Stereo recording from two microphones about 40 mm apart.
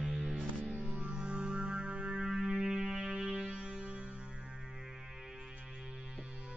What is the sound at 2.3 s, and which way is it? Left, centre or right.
Music, centre.